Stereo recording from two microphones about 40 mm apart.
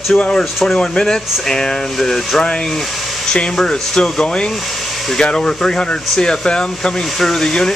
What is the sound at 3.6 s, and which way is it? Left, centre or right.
Speech, centre.